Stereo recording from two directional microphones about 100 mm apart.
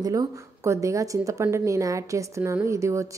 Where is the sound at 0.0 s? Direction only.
35° right (ahead or behind).